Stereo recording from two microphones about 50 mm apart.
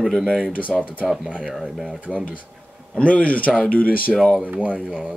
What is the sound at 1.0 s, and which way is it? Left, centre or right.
Speech, centre.